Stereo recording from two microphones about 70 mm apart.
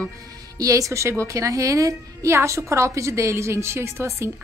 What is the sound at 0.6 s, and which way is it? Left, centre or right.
A woman's voice, right.